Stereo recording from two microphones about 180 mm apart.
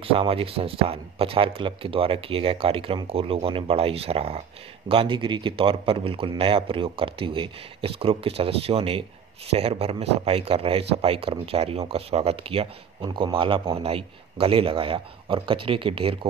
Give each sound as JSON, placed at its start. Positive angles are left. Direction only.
{"t": 0.0, "sound": "speech", "side_deg": -30}